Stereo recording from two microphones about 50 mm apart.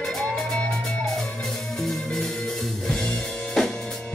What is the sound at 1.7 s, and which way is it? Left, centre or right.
Music, centre.